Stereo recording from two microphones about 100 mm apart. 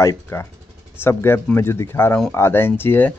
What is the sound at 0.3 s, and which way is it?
Speech, 25° left (ahead or behind).